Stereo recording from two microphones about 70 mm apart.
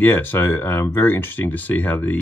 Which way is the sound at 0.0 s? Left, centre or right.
Left.